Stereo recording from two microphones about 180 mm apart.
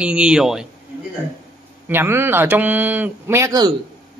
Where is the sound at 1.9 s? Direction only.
10° right (ahead or behind).